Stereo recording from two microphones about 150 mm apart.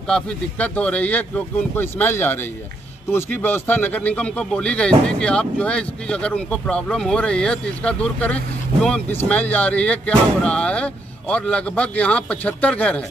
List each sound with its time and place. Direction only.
0.1 s speech: 10° left (ahead or behind)